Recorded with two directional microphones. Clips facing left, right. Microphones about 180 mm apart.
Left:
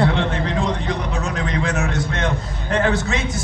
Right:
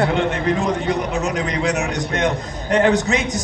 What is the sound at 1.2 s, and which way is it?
A man's voice, 20° right (ahead or behind).